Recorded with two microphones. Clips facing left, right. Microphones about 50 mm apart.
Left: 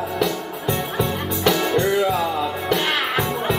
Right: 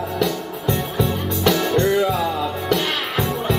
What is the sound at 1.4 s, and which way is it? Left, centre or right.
Music, centre.